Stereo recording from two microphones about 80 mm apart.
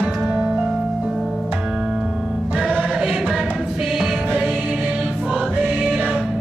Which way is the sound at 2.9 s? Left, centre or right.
Centre.